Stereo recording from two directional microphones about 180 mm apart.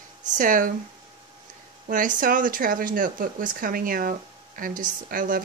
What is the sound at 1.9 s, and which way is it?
Speech, 50° right (ahead or behind).